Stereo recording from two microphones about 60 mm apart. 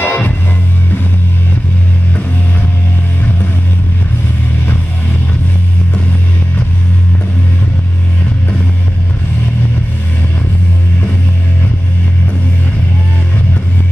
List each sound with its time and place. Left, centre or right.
0.0 s music: left